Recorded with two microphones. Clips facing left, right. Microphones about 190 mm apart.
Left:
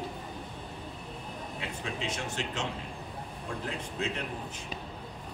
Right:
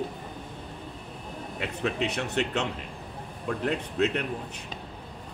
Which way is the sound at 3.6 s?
65° right (ahead or behind).